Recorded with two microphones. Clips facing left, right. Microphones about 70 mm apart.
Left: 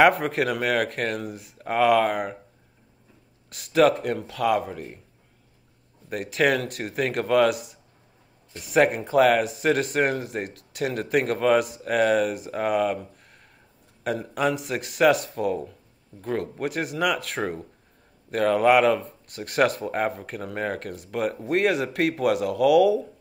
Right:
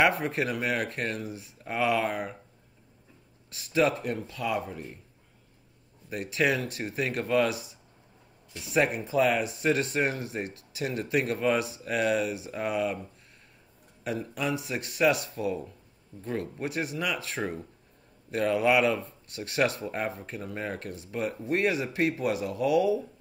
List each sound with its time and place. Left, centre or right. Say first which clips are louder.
0.0 s speech: left 6 dB; left
3.4 s speech: left 6 dB; left
6.0 s speech: left 4 dB; left
14.0 s speech: left 6 dB; left